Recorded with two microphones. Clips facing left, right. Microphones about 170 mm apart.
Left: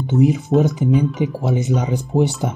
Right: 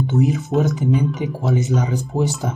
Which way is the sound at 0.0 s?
15° left (ahead or behind).